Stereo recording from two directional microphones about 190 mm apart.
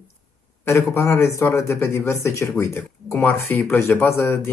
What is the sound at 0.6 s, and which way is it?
Speech, 15° left (ahead or behind).